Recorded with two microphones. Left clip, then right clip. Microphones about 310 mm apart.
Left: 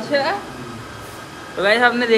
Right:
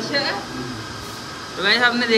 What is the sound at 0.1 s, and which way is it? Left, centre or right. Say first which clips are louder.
Speech: left 4 dB; centre.